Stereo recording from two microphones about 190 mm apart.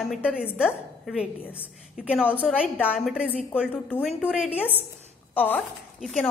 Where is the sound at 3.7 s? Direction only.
10° left (ahead or behind).